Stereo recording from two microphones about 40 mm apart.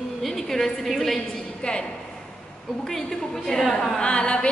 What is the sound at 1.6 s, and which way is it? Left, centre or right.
Speech, left.